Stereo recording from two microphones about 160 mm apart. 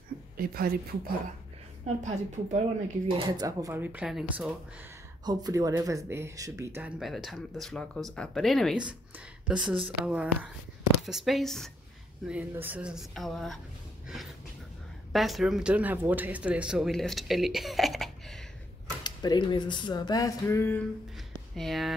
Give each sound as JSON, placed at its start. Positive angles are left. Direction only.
{"t": 0.4, "sound": "a woman's voice", "side_deg": -65}
{"t": 2.0, "sound": "a woman's voice", "side_deg": -45}
{"t": 3.1, "sound": "speech", "side_deg": -25}
{"t": 5.2, "sound": "speech", "side_deg": -25}
{"t": 7.0, "sound": "speech", "side_deg": 0}
{"t": 12.3, "sound": "speech", "side_deg": -10}
{"t": 15.1, "sound": "speech", "side_deg": 0}
{"t": 19.0, "sound": "speech", "side_deg": 25}
{"t": 21.5, "sound": "speech", "side_deg": 0}